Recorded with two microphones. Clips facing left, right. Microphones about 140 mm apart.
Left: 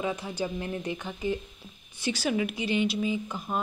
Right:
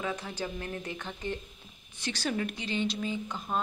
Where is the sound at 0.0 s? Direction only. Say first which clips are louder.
Left 4 dB; 10° left (ahead or behind).